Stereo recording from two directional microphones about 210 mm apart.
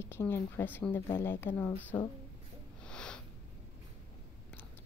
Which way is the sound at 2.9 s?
5° left (ahead or behind).